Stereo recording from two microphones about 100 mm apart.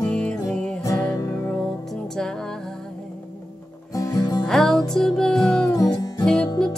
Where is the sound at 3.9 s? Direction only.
40° left (ahead or behind).